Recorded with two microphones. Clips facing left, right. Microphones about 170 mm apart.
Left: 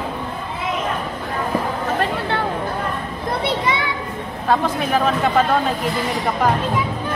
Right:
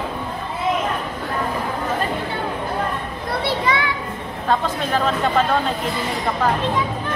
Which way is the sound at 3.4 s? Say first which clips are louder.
Right 1 dB; 20° left (ahead or behind).